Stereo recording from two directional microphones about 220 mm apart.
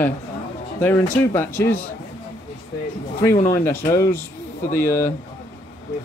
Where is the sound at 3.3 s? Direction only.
40° left (ahead or behind).